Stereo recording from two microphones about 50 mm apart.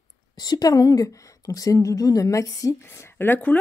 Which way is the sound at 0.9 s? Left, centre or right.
Left.